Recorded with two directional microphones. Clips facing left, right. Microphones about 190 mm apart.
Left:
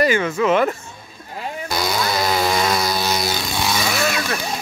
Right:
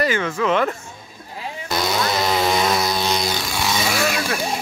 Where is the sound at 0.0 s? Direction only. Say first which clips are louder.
Left 3 dB; 10° left (ahead or behind).